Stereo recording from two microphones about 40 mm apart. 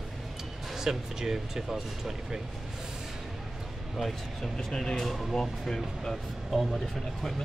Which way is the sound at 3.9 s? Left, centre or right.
Centre.